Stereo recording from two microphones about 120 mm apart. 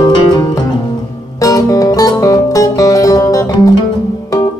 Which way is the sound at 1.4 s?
30° left (ahead or behind).